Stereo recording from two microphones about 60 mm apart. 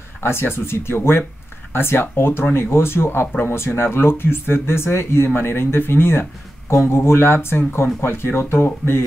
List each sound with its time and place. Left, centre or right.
0.2 s speech: left